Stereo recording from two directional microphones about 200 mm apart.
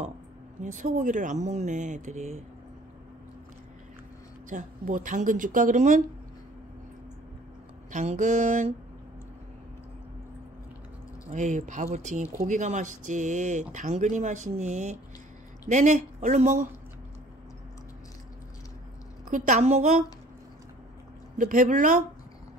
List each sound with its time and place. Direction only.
0.6 s speech: 40° right (ahead or behind)
4.5 s speech: 40° right (ahead or behind)
7.9 s speech: 35° right (ahead or behind)
11.2 s speech: 35° right (ahead or behind)
19.3 s speech: 40° right (ahead or behind)
21.4 s speech: 40° right (ahead or behind)